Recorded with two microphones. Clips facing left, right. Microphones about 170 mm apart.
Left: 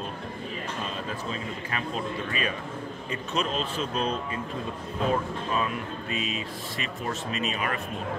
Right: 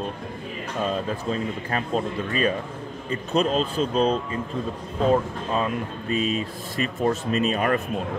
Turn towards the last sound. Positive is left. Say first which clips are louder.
# right 8 dB
turn(degrees=-40)  # may be behind; listen again after turning